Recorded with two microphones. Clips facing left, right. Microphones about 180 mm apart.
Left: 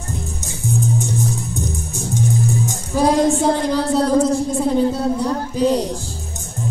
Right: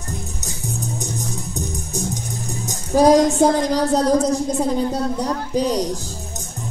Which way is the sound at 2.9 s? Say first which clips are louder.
Right 3 dB; 40° right (ahead or behind).